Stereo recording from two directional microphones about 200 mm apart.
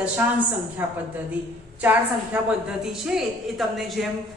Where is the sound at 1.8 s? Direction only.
5° right (ahead or behind).